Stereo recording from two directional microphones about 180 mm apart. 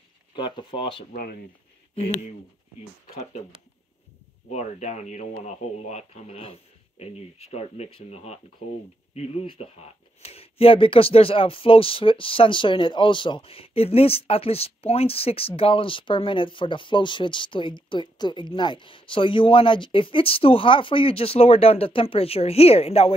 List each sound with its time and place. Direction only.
0.4 s speech: 25° left (ahead or behind)
1.1 s speech: 55° left (ahead or behind)
4.5 s speech: 40° left (ahead or behind)